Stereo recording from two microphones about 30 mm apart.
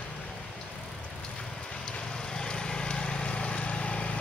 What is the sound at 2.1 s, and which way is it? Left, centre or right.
Vehicle, left.